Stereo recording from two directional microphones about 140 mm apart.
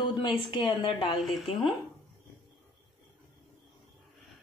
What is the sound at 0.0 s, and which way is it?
A woman's voice, 35° left (ahead or behind).